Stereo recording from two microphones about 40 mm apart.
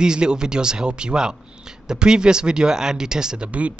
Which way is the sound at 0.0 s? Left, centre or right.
Right.